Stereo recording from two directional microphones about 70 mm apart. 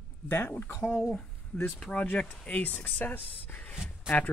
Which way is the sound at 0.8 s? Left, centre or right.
Centre.